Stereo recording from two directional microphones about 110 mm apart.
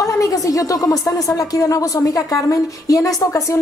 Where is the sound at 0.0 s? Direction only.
30° left (ahead or behind).